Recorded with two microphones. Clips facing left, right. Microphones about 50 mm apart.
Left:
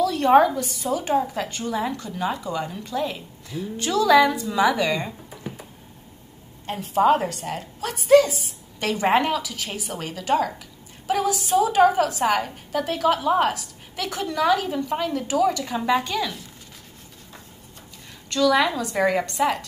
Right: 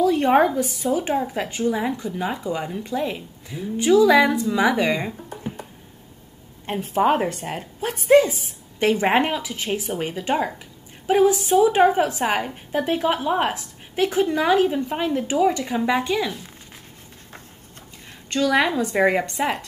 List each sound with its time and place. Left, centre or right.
0.0 s a sound: right
1.1 s a woman's voice: centre
6.6 s a woman's voice: right
18.3 s a woman's voice: right